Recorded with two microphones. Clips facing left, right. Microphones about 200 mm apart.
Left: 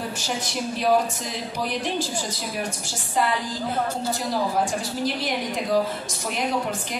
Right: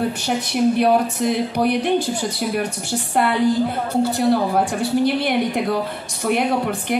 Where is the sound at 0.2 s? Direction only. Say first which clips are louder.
Right 9 dB; 60° right (ahead or behind).